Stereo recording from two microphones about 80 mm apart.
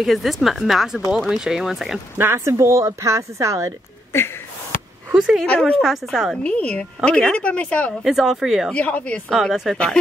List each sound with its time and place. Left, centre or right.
0.0 s a woman's voice: centre
2.1 s speech: right
5.1 s a woman's voice: centre
6.3 s a woman's voice: centre
8.0 s a woman's voice: centre
8.7 s a woman's voice: centre
9.3 s a woman's voice: centre